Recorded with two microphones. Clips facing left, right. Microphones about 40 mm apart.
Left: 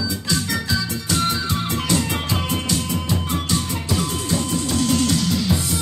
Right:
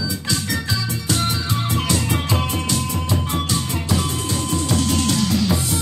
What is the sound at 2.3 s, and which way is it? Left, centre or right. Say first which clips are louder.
Music: right 1 dB; centre.